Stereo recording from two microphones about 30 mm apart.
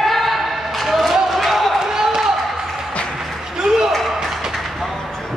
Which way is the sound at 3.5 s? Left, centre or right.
Centre.